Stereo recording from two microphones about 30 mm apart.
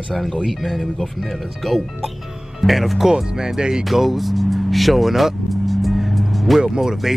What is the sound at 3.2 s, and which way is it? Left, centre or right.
Speech, right.